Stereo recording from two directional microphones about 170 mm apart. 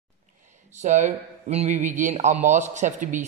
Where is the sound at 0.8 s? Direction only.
45° right (ahead or behind).